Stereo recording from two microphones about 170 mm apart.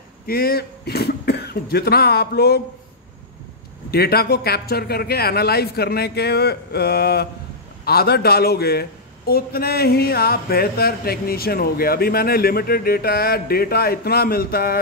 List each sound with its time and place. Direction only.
0.3 s speech: 65° left (ahead or behind)
3.9 s a man's voice: 65° left (ahead or behind)